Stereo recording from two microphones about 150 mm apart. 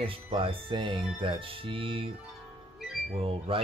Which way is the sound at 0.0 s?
35° right (ahead or behind).